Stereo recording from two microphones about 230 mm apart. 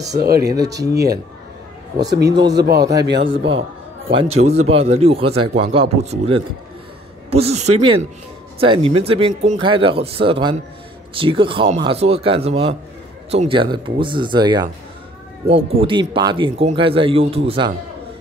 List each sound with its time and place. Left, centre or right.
0.0 s speech: right
2.8 s speech: centre
4.1 s speech: right